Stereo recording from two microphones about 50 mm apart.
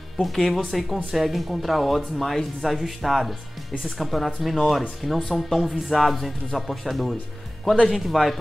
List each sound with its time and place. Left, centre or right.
0.2 s speech: centre